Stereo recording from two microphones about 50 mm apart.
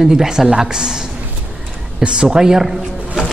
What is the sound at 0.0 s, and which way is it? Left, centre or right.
A man's voice, centre.